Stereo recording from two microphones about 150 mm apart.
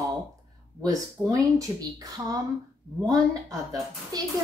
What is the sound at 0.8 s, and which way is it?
A woman's voice, 25° right (ahead or behind).